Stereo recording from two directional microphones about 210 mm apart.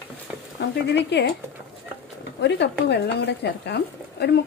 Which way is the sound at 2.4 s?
55° left (ahead or behind).